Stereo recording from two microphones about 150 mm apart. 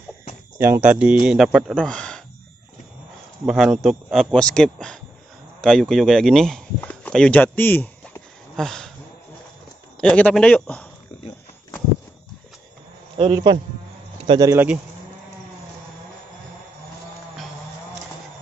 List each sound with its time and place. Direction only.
0.6 s speech: 15° right (ahead or behind); by 2.2 s 5° left (ahead or behind)
3.4 s speech: 5° right (ahead or behind)
9.9 s a man's voice: 10° left (ahead or behind)
13.2 s a man's voice: 35° right (ahead or behind)
14.4 s speech: 20° right (ahead or behind)